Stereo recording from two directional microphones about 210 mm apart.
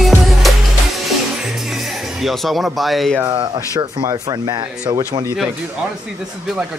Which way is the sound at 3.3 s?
20° right (ahead or behind).